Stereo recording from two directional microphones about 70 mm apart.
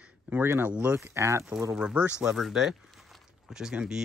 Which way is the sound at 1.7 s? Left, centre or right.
Centre.